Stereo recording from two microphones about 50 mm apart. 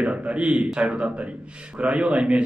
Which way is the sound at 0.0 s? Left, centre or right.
Right.